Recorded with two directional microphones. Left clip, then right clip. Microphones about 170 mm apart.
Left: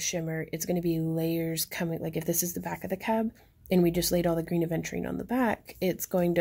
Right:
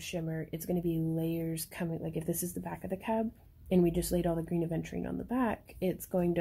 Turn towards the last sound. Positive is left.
turn(degrees=30)  # may be behind; listen again after turning